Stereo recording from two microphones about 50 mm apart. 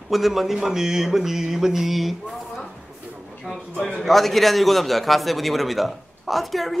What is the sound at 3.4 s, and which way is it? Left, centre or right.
A man's voice, centre.